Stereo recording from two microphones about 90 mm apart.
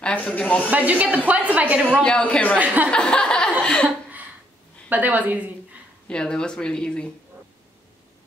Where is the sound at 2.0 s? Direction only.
15° left (ahead or behind).